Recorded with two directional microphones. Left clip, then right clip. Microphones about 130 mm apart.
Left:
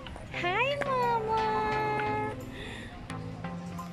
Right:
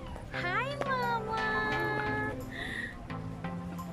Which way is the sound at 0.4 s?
20° left (ahead or behind).